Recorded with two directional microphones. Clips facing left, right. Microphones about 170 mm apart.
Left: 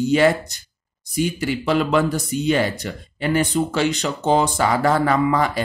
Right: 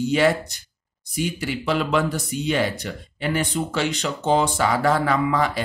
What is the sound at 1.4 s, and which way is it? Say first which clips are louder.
Speech: left 3 dB; 45° left (ahead or behind).